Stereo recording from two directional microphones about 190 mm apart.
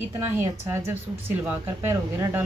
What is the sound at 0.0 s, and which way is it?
Speech, 10° right (ahead or behind).